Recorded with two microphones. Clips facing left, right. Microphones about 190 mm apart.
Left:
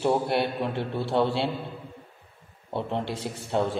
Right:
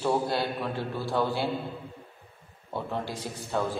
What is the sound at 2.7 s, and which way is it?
A man's voice, 25° left (ahead or behind).